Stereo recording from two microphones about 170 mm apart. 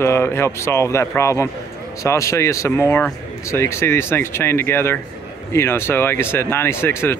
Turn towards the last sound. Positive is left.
turn(degrees=15)  # may be behind; listen again after turning